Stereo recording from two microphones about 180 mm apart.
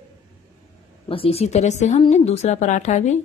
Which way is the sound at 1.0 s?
30° left (ahead or behind).